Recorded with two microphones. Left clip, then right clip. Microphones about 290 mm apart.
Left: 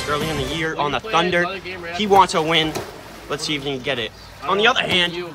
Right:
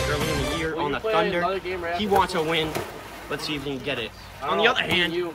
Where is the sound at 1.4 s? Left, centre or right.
Centre.